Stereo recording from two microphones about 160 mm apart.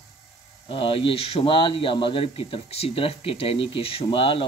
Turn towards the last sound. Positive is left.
turn(degrees=35)  # may be behind; listen again after turning